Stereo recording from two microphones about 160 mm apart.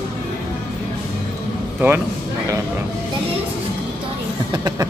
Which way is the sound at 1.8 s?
15° right (ahead or behind).